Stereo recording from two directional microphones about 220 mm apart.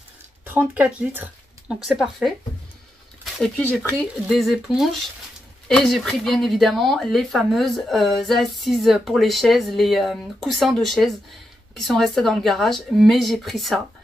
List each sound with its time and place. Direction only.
0.5 s speech: 10° right (ahead or behind)
3.3 s speech: 5° left (ahead or behind)